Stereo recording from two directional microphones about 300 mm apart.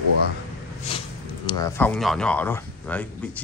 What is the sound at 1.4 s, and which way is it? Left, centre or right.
Speech, centre.